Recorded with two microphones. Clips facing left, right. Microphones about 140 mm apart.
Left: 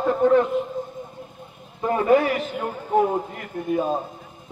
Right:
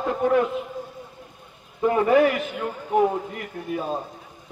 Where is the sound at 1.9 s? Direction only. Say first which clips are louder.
Even; 35° left (ahead or behind).